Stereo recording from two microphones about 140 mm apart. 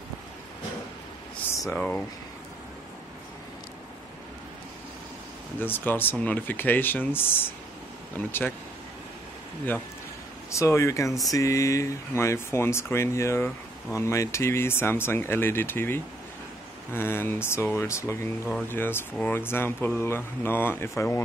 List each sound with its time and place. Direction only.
1.8 s speech: 10° left (ahead or behind)
5.6 s speech: 15° left (ahead or behind)
10.5 s speech: 20° left (ahead or behind)